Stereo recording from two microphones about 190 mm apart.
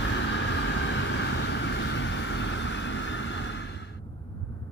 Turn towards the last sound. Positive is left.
turn(degrees=70)  # may be behind; listen again after turning